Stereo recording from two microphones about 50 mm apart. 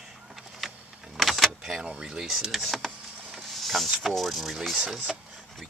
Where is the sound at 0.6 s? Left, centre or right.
Centre.